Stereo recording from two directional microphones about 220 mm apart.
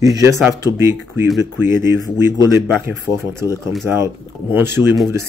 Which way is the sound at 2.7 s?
10° right (ahead or behind).